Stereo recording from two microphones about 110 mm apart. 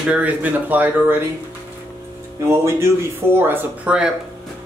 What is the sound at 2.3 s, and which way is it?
Speech, 25° right (ahead or behind).